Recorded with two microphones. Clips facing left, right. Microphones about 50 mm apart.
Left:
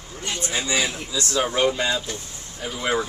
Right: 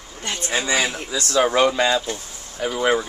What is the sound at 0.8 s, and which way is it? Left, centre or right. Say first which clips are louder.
Speech: right 2 dB; right.